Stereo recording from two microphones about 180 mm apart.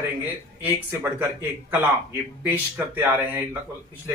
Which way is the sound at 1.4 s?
10° right (ahead or behind).